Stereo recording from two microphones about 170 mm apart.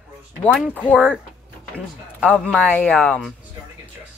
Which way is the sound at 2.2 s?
5° left (ahead or behind).